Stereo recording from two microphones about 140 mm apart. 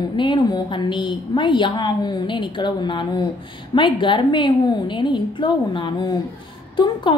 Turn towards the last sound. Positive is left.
turn(degrees=35)  # may be behind; listen again after turning